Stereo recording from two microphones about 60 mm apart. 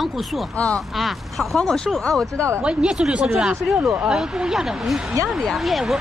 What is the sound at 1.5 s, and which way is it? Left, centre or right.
Speech, centre.